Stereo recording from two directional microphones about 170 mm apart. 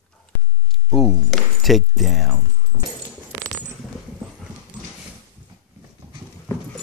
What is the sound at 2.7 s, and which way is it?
Dog, 10° right (ahead or behind).